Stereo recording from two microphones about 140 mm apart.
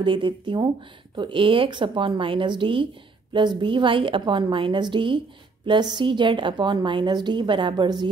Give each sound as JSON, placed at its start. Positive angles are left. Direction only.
{"t": 0.0, "sound": "a woman's voice", "side_deg": -35}